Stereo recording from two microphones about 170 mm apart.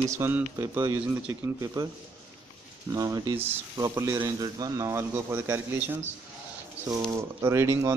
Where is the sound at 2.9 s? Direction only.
20° right (ahead or behind).